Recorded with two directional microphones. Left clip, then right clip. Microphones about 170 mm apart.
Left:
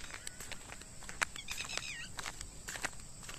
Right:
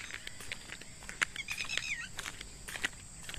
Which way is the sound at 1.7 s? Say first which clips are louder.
Right 5 dB; 40° left (ahead or behind).